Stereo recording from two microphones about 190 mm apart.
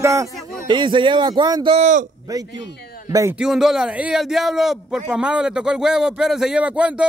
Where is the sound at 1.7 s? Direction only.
40° right (ahead or behind).